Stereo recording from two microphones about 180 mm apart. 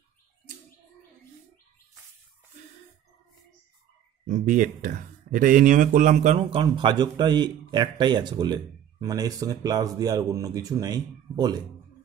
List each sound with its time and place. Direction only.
4.3 s speech: 45° right (ahead or behind); by 11.6 s 20° right (ahead or behind)